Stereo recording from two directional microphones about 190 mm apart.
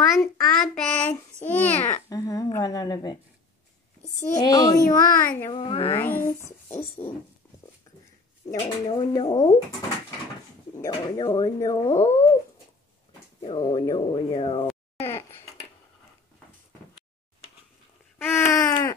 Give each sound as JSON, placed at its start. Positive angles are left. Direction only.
{"t": 0.1, "sound": "child singing", "side_deg": 5}
{"t": 1.4, "sound": "a child's voice", "side_deg": 10}
{"t": 5.4, "sound": "a child's voice", "side_deg": 25}
{"t": 6.0, "sound": "a child's voice", "side_deg": 10}
{"t": 8.5, "sound": "a child's voice", "side_deg": 25}
{"t": 10.8, "sound": "a child's voice", "side_deg": 20}
{"t": 13.5, "sound": "a child's voice", "side_deg": 20}
{"t": 15.0, "sound": "a sound", "side_deg": 10}
{"t": 18.2, "sound": "a sound", "side_deg": 15}